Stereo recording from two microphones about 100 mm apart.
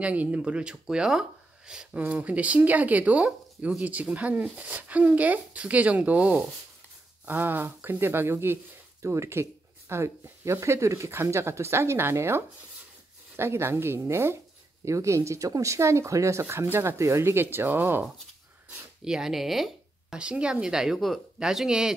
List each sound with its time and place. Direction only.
0.0 s speech: 15° right (ahead or behind)
19.0 s speech: 5° right (ahead or behind)